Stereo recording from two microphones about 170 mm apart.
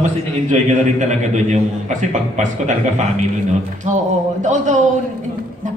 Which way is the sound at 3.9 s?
45° right (ahead or behind).